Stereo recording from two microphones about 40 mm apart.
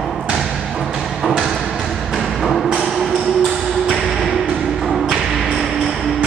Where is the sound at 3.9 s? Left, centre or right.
Centre.